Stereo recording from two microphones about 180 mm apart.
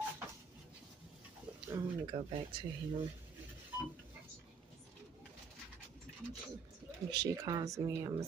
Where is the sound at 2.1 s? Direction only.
30° right (ahead or behind).